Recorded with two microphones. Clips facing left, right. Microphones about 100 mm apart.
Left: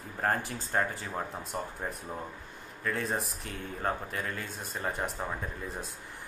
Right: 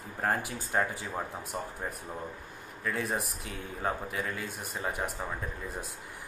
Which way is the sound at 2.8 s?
10° right (ahead or behind).